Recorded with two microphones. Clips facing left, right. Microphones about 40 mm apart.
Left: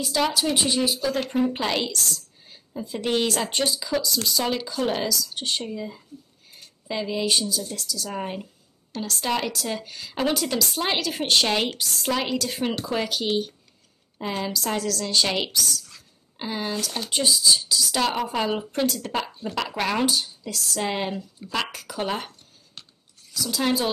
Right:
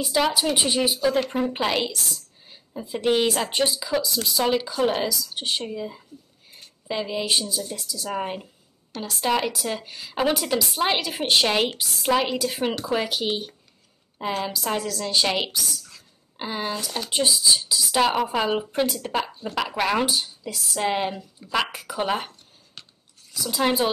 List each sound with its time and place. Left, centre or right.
0.3 s a woman's voice: centre
23.3 s a woman's voice: centre